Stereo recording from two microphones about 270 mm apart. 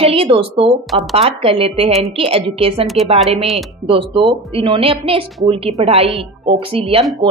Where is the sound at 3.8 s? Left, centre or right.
Centre.